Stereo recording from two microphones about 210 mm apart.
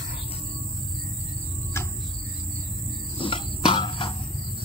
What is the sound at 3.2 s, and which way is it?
Cricket, 25° left (ahead or behind).